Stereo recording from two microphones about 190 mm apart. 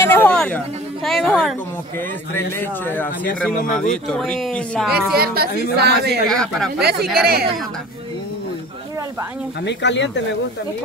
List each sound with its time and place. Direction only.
0.1 s a sound: 5° left (ahead or behind)
1.0 s speech: centre (ahead or behind)
2.3 s a man's voice: 10° left (ahead or behind)
5.1 s a woman's voice: 55° right (ahead or behind)
6.2 s speech: 5° left (ahead or behind)
6.8 s a woman's voice: 55° right (ahead or behind)
9.7 s speech: 65° left (ahead or behind)